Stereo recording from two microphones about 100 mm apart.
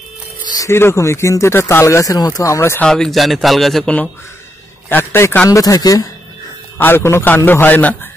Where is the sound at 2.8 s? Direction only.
5° left (ahead or behind).